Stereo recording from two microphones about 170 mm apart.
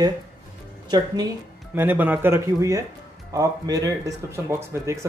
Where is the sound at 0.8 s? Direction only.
25° right (ahead or behind).